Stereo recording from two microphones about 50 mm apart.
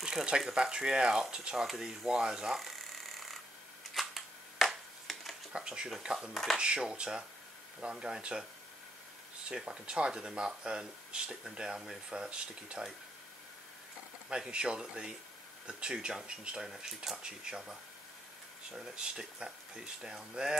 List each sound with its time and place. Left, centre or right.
0.0 s a sound: centre
0.5 s speech: centre
3.9 s camera: centre
5.1 s a sound: centre
5.5 s speech: centre
6.3 s speech: centre
6.6 s speech: centre
14.3 s speech: centre